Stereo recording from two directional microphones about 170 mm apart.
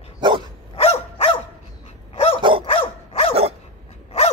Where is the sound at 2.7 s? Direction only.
35° left (ahead or behind).